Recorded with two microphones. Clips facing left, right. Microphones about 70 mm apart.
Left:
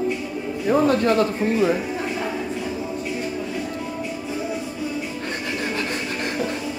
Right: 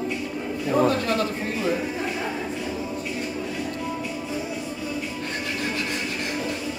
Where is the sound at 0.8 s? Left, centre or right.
Left.